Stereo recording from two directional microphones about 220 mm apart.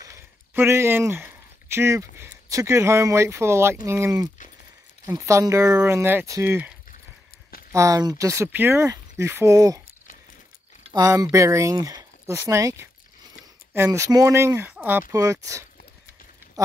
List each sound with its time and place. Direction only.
0.6 s speech: 10° right (ahead or behind)
7.7 s speech: 15° right (ahead or behind)
10.9 s speech: 15° right (ahead or behind)